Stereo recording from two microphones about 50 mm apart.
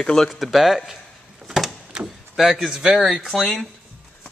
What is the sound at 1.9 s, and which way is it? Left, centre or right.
Door, centre.